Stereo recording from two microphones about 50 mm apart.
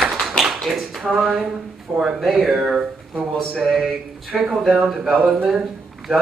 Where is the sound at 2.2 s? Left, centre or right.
Centre.